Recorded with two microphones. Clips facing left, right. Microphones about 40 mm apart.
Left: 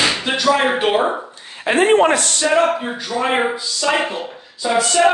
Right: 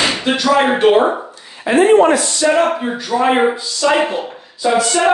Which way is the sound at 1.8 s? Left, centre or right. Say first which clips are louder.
Right 3 dB; left.